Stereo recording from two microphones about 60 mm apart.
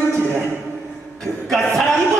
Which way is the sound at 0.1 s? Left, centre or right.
Right.